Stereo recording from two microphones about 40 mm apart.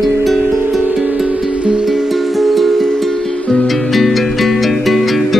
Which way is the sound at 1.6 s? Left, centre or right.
Right.